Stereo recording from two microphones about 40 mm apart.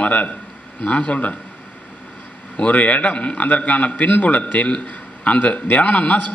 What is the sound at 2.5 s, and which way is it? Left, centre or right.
A man's voice, left.